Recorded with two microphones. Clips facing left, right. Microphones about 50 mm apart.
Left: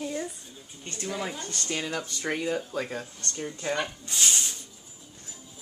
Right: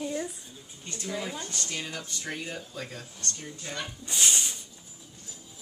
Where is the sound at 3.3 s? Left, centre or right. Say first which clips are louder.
Left 8 dB; left.